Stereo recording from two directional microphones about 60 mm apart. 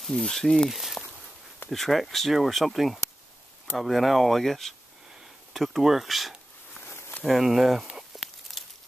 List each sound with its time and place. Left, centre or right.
0.0 s speech: centre
0.7 s speech: centre
6.8 s a sound: left
7.2 s crumpling: centre